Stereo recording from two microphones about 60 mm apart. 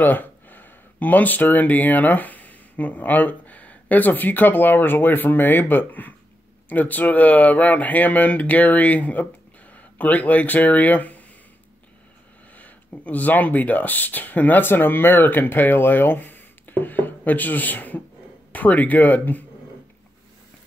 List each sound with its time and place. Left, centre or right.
0.0 s speech: left
13.0 s speech: left